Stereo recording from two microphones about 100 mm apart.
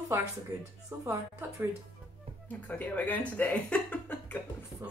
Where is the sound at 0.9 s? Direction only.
25° right (ahead or behind).